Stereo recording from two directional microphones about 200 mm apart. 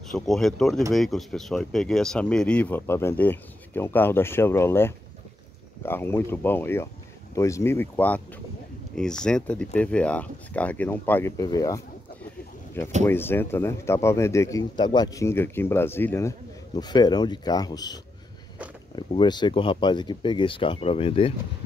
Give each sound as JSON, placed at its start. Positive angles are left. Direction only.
{"t": 0.1, "sound": "speech", "side_deg": 0}
{"t": 13.0, "sound": "speech", "side_deg": 10}